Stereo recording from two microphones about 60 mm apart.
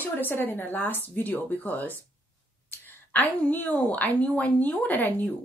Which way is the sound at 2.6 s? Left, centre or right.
Left.